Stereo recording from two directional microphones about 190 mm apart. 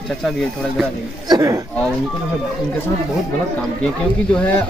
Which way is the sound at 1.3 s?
15° right (ahead or behind).